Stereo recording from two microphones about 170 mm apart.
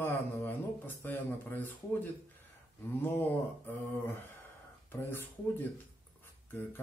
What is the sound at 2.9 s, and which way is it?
Speech, 10° left (ahead or behind).